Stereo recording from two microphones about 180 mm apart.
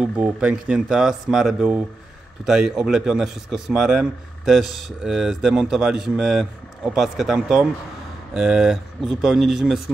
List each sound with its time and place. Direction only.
0.0 s speech: 5° right (ahead or behind)